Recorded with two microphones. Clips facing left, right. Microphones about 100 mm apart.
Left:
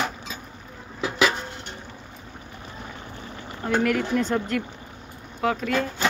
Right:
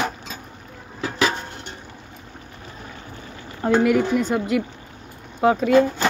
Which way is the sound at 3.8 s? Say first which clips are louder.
Right 4 dB; 15° right (ahead or behind).